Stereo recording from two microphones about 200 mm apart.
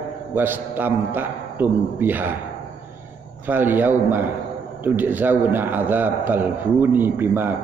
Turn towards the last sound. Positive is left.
turn(degrees=-10)  # may be behind; listen again after turning